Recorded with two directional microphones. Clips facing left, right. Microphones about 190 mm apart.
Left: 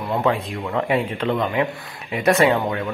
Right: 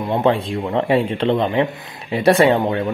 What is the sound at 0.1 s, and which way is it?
Speech, 30° right (ahead or behind).